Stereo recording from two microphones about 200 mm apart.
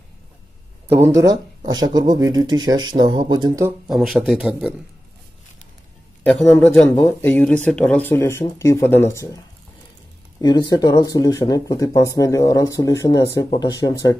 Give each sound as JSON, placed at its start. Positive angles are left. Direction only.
{"t": 1.7, "sound": "speech", "side_deg": -20}
{"t": 3.9, "sound": "a man's voice", "side_deg": 0}
{"t": 6.2, "sound": "speech", "side_deg": 10}
{"t": 10.4, "sound": "speech", "side_deg": 20}